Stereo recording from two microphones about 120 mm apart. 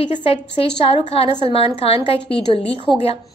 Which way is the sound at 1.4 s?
55° left (ahead or behind).